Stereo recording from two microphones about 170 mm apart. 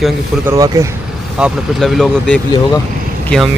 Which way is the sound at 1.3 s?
5° right (ahead or behind).